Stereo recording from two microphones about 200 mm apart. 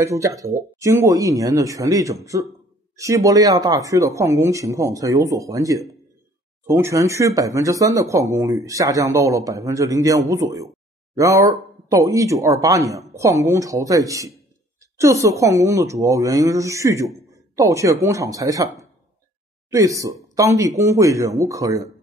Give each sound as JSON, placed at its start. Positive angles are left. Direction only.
{"t": 0.0, "sound": "speech", "side_deg": -15}
{"t": 19.7, "sound": "speech", "side_deg": -15}